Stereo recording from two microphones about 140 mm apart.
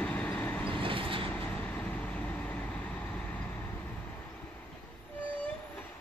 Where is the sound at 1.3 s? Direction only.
10° left (ahead or behind).